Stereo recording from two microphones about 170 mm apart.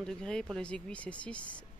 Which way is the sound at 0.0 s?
5° left (ahead or behind).